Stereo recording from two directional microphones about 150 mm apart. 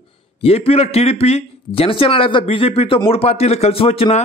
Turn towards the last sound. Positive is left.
turn(degrees=40)  # may be behind; listen again after turning